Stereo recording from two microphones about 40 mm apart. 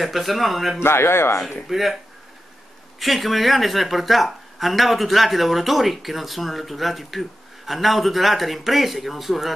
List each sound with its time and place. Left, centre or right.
0.0 s a woman's voice: centre
0.7 s a man's voice: left
1.7 s a woman's voice: centre
3.0 s a woman's voice: centre